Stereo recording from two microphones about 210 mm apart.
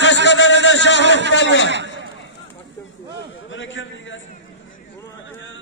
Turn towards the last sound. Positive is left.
turn(degrees=60)  # may be behind; listen again after turning